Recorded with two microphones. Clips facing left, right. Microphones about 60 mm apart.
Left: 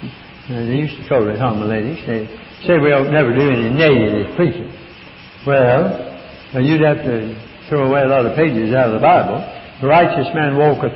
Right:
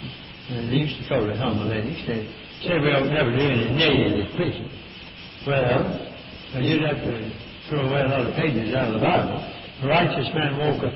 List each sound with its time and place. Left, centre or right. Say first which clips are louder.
0.5 s speech: left 7 dB; left
1.1 s a man's voice: left 9 dB; left
1.5 s speech: left 7 dB; left
2.1 s a man's voice: left 7 dB; left